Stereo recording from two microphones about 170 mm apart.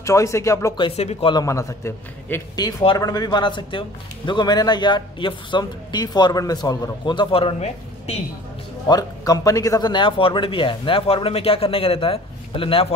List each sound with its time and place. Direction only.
0.0 s speech: 15° left (ahead or behind)
0.7 s speech: 35° left (ahead or behind)
1.3 s a man's voice: 20° left (ahead or behind)
2.6 s a man's voice: 25° left (ahead or behind)
8.8 s speech: 20° left (ahead or behind)